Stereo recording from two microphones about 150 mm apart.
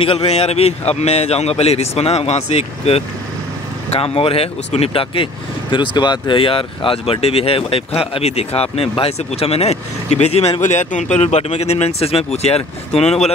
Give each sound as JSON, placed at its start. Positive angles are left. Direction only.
{"t": 0.0, "sound": "speech", "side_deg": 40}